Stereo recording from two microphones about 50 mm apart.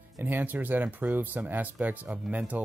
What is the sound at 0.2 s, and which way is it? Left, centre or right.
Speech, right.